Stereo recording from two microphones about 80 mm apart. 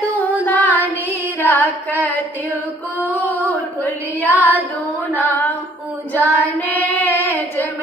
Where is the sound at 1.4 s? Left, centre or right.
Left.